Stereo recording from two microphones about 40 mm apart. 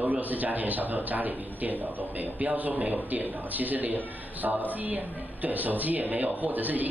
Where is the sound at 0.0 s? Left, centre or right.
Right.